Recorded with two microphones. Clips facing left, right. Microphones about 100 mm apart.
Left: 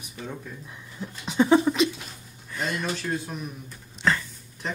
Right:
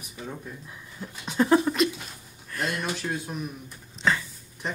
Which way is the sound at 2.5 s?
Centre (ahead or behind).